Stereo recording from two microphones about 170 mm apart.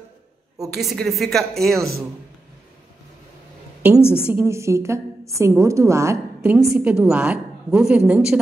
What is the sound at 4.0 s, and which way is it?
Speech, 15° left (ahead or behind).